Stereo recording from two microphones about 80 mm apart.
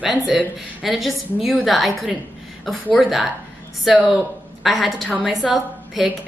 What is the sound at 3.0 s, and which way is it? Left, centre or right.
Speech, centre.